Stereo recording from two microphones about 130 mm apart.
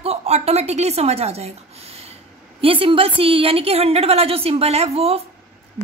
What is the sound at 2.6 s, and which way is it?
A woman's voice, 45° right (ahead or behind).